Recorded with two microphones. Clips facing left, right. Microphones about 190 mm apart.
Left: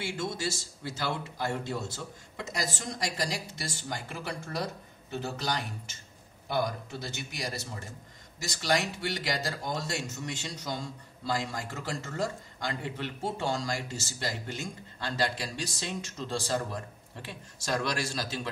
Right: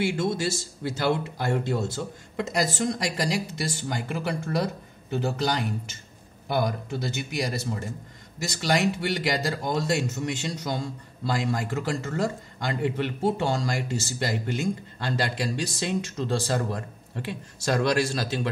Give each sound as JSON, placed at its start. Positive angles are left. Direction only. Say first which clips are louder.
{"t": 0.0, "sound": "a man's voice", "louder": "right 8 dB", "side_deg": -65}